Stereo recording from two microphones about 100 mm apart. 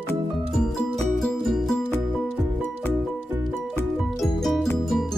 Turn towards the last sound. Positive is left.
turn(degrees=0)  # may be behind; listen again after turning